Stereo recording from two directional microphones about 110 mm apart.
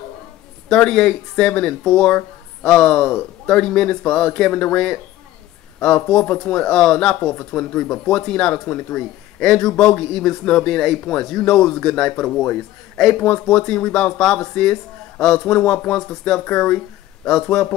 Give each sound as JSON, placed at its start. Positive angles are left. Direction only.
{"t": 0.7, "sound": "speech", "side_deg": 5}
{"t": 7.3, "sound": "speech", "side_deg": 15}